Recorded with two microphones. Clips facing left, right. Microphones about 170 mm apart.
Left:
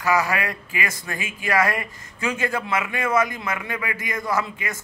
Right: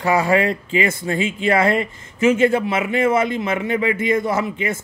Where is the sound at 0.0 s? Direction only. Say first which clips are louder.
Right 6 dB; 30° right (ahead or behind).